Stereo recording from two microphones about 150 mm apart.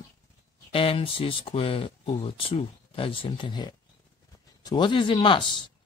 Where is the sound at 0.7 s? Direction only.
40° left (ahead or behind).